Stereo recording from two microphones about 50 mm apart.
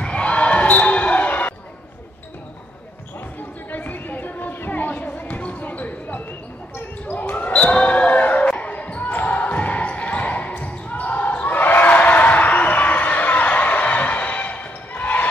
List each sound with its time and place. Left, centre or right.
0.0 s basketball bounce: left
3.7 s music: left
7.1 s basketball bounce: left